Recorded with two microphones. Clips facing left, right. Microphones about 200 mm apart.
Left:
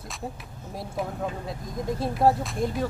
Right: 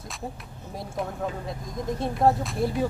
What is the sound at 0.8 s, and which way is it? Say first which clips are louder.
Speech: even; centre (ahead or behind).